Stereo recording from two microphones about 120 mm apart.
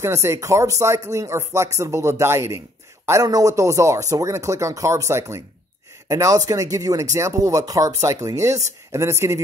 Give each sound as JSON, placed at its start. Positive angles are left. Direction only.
{"t": 0.0, "sound": "speech", "side_deg": -25}